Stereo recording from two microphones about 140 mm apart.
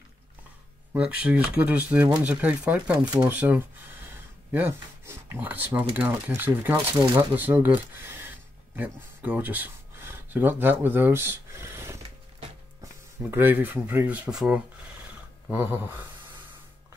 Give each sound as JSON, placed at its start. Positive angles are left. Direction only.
{"t": 0.9, "sound": "speech", "side_deg": -10}
{"t": 13.2, "sound": "speech", "side_deg": -15}
{"t": 15.5, "sound": "speech", "side_deg": -15}